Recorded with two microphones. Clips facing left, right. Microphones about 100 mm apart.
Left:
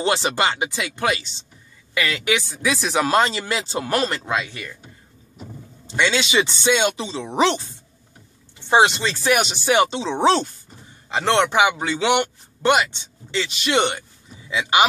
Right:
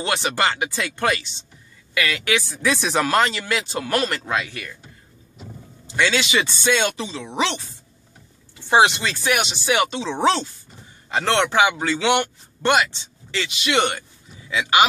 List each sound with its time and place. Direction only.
0.0 s speech: 25° left (ahead or behind)
0.4 s speech: 15° left (ahead or behind)
2.0 s speech: 25° left (ahead or behind)
2.6 s speech: 5° left (ahead or behind)
3.1 s speech: 25° left (ahead or behind)
5.9 s speech: 25° left (ahead or behind)
7.3 s speech: 35° left (ahead or behind)
9.0 s speech: 30° left (ahead or behind)
9.8 s speech: 20° left (ahead or behind)
13.3 s speech: 25° left (ahead or behind)